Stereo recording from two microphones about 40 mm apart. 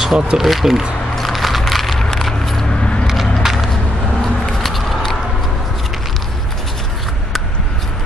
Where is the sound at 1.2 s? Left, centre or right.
Centre.